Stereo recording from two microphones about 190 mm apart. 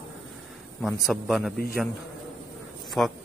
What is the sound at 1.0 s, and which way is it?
Speech, centre (ahead or behind).